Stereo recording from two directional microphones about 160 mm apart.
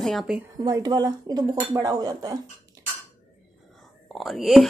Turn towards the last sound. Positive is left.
turn(degrees=0)  # may be behind; listen again after turning